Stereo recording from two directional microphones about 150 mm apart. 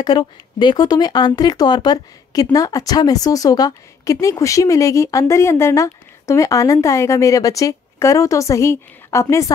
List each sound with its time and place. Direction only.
0.0 s speech: 30° left (ahead or behind)